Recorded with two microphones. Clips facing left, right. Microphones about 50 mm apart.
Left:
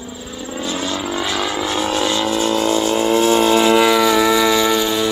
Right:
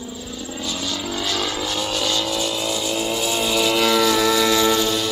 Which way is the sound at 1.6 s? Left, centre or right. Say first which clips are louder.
Left 5 dB; left.